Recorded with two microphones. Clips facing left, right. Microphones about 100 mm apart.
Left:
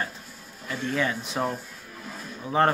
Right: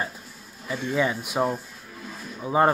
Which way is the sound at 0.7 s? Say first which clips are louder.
Right 2 dB; 15° right (ahead or behind).